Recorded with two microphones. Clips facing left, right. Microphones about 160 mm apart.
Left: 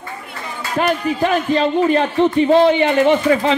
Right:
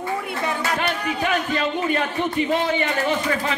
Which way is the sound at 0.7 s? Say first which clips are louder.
Left 7 dB; 35° left (ahead or behind).